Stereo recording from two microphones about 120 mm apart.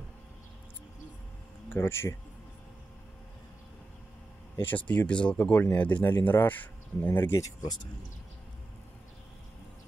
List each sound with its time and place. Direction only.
1.7 s speech: 20° left (ahead or behind)
4.6 s speech: 10° left (ahead or behind)